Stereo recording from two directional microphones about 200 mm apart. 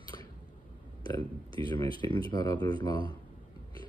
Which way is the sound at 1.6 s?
20° left (ahead or behind).